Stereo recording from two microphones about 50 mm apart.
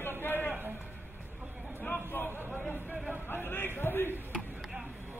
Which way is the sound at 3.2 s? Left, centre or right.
Left.